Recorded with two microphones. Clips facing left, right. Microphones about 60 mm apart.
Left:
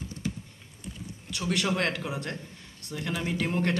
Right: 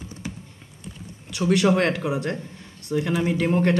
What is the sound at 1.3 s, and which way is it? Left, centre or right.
A man's voice, centre.